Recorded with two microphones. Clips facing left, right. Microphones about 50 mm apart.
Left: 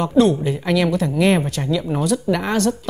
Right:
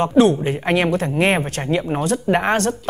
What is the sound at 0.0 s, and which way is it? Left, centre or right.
Speech, right.